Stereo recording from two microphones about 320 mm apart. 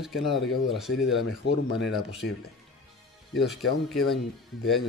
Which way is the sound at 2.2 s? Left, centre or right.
Left.